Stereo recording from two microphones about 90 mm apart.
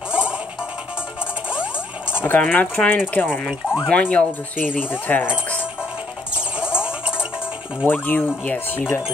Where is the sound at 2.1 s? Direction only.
25° left (ahead or behind).